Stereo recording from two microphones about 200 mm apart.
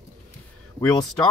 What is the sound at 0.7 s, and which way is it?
Speech, 20° left (ahead or behind).